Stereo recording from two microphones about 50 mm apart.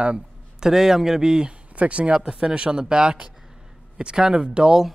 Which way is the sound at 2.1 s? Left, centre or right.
Centre.